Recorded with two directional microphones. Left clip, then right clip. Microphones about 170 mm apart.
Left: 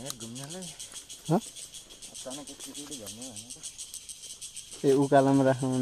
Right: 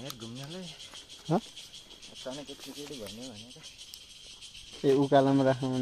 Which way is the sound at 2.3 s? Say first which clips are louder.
Right 1 dB; 85° right.